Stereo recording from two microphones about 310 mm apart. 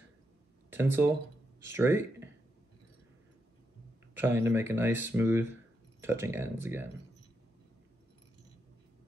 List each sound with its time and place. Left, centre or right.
0.7 s speech: centre
4.1 s speech: centre